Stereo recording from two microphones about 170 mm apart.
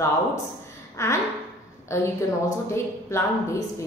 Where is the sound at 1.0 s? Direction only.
15° left (ahead or behind).